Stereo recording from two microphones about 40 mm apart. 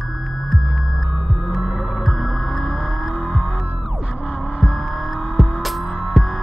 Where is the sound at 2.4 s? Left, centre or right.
Centre.